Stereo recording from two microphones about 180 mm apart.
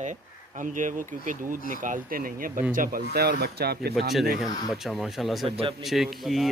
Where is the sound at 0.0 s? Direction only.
45° right (ahead or behind); by 3.9 s 60° right (ahead or behind).